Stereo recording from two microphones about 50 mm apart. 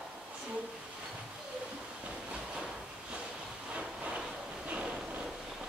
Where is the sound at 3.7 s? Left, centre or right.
Centre.